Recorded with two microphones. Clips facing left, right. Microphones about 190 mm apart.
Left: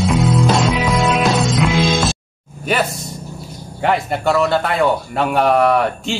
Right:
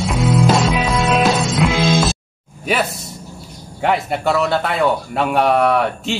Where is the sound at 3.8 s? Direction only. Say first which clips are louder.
Left 1 dB; centre (ahead or behind).